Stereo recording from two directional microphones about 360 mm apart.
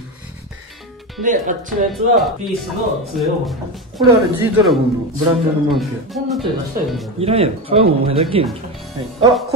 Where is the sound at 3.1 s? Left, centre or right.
Centre.